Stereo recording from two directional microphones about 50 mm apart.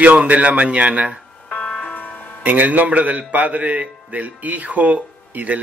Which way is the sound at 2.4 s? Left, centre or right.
Right.